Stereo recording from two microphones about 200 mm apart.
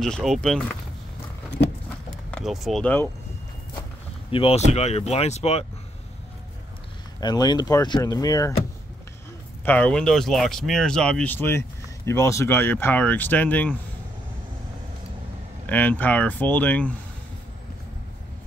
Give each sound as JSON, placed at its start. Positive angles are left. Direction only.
{"t": 0.0, "sound": "speech", "side_deg": 0}
{"t": 2.3, "sound": "speech", "side_deg": 0}
{"t": 4.3, "sound": "speech", "side_deg": 25}
{"t": 7.2, "sound": "speech", "side_deg": 20}
{"t": 9.7, "sound": "speech", "side_deg": 5}
{"t": 15.6, "sound": "speech", "side_deg": 10}